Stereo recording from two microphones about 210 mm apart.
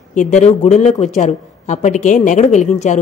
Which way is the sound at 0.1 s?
35° left (ahead or behind).